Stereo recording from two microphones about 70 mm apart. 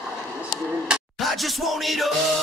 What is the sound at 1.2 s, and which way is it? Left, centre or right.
Music, centre.